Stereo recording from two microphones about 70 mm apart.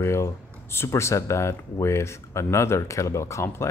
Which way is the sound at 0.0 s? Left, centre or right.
Left.